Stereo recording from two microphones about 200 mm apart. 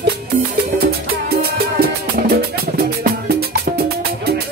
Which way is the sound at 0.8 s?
50° right (ahead or behind).